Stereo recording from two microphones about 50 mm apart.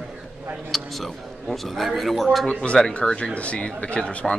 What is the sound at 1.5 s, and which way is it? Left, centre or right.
Speech, centre.